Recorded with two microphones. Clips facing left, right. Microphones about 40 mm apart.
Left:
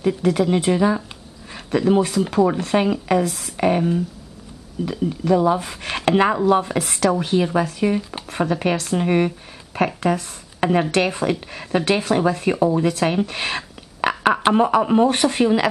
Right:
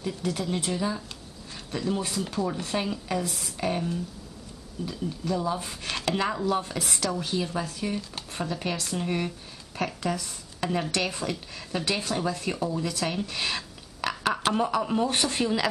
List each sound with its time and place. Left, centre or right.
0.0 s speech: left
4.8 s speech: left
5.9 s chopping: left
6.9 s speech: left